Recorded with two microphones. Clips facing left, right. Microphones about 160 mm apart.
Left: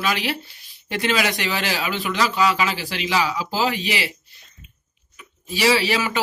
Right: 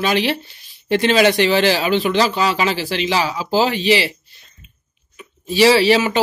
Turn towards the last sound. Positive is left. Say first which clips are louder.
# right 7 dB
turn(degrees=-30)  # may be behind; listen again after turning